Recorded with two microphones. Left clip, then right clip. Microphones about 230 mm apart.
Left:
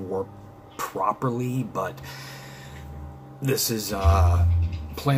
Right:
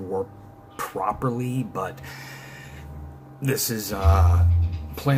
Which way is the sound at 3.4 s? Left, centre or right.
Centre.